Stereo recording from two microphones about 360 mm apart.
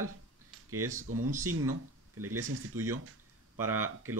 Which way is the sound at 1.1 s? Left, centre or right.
Right.